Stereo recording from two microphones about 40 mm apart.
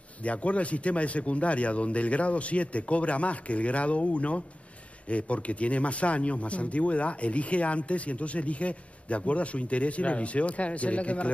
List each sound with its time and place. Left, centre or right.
0.2 s speech: left